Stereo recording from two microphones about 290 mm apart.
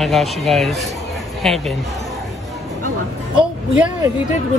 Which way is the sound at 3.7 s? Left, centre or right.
Centre.